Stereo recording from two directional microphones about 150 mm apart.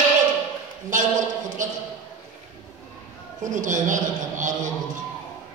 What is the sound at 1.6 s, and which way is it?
Speech, 60° right (ahead or behind).